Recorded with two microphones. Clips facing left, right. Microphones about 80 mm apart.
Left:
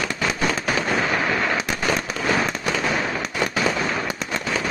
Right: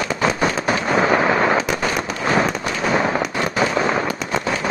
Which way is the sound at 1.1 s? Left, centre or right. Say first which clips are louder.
Right 6 dB; right.